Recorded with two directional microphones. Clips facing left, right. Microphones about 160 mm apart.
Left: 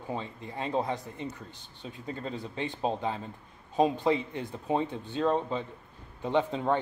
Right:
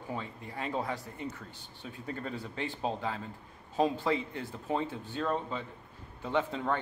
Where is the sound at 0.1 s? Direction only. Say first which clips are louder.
Left 3 dB; 25° left (ahead or behind).